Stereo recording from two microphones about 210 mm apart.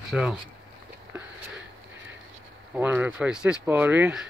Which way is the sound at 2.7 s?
10° right (ahead or behind).